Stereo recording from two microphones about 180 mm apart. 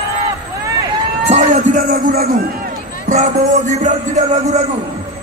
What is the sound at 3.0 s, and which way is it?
Music, 45° right (ahead or behind).